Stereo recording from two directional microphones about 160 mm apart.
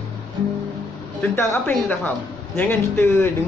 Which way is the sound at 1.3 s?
10° left (ahead or behind).